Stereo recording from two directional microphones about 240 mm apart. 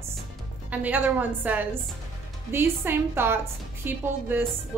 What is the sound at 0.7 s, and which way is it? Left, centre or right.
Speech, centre.